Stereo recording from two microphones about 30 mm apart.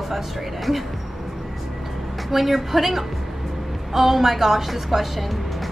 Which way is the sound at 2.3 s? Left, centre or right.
Centre.